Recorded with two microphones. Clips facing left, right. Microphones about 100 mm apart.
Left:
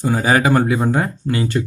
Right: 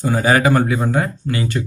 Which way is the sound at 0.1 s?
5° left (ahead or behind).